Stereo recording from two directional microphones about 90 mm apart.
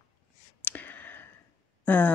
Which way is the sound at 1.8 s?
20° left (ahead or behind).